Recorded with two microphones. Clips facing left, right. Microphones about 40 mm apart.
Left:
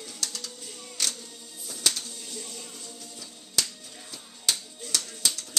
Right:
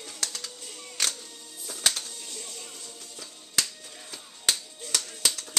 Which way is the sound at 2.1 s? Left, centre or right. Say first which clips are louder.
Left 1 dB; centre.